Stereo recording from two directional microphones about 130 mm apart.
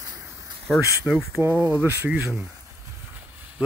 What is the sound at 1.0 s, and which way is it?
Speech, 10° right (ahead or behind).